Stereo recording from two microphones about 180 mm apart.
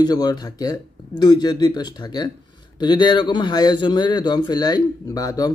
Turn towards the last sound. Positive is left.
turn(degrees=20)  # may be behind; listen again after turning